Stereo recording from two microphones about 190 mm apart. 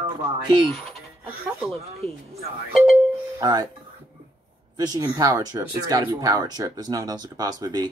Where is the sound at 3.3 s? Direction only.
20° right (ahead or behind).